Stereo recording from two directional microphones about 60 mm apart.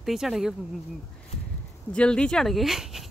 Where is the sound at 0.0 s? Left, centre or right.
Centre.